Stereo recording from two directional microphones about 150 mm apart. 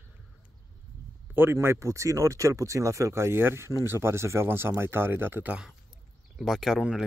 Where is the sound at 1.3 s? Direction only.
15° right (ahead or behind).